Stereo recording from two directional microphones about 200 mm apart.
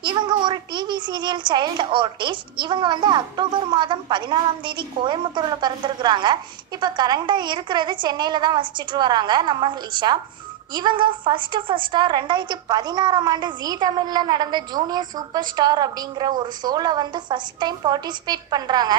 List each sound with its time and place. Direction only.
0.0 s a child's voice: 25° right (ahead or behind)